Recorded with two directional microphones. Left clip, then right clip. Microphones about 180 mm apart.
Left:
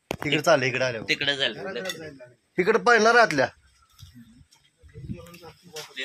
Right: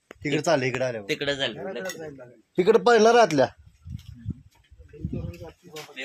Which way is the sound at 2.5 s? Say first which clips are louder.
Right 1 dB; 35° right (ahead or behind).